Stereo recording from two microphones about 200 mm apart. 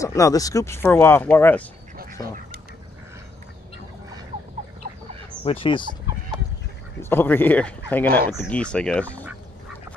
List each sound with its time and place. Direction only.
0.0 s speech: 15° left (ahead or behind)
5.4 s speech: 30° left (ahead or behind)
7.0 s speech: 10° left (ahead or behind)